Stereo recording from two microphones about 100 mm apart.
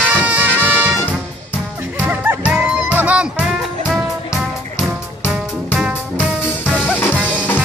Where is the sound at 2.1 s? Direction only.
15° right (ahead or behind).